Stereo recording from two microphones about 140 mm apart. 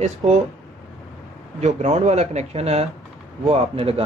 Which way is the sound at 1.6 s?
55° right (ahead or behind).